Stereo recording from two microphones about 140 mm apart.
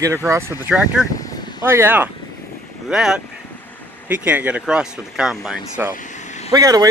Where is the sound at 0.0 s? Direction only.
20° right (ahead or behind).